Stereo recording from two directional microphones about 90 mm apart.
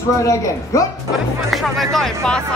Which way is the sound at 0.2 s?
35° left (ahead or behind).